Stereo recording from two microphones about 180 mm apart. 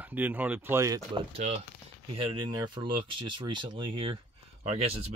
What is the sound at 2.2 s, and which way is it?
Speech, 25° right (ahead or behind).